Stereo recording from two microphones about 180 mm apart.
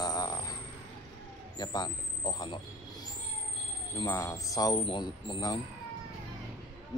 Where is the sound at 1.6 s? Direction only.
20° left (ahead or behind).